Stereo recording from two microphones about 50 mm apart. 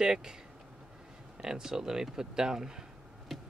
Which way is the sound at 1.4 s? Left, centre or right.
Centre.